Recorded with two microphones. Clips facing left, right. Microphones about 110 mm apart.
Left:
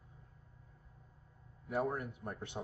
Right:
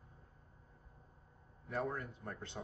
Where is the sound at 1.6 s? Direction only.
15° left (ahead or behind).